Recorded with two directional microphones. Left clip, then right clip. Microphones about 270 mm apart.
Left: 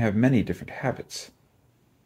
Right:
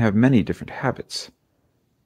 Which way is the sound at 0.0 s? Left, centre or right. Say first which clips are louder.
Right 4 dB; right.